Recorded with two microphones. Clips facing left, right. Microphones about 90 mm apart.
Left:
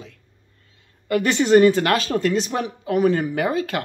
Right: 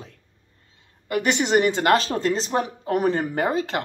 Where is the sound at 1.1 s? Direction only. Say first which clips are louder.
Left 5 dB; 20° right (ahead or behind).